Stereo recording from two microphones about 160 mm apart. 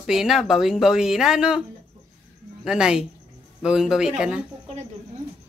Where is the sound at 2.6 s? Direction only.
5° right (ahead or behind).